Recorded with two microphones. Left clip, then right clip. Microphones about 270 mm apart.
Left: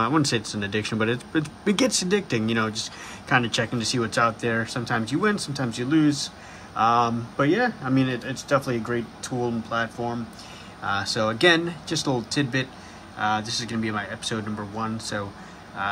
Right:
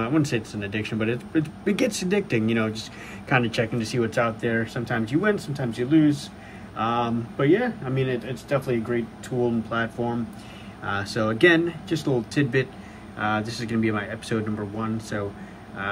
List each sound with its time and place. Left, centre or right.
0.0 s a man's voice: centre